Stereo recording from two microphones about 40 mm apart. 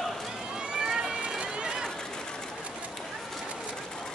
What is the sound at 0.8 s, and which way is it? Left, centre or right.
Run, centre.